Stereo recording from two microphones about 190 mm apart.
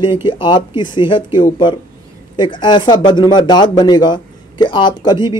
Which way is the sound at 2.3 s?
25° left (ahead or behind).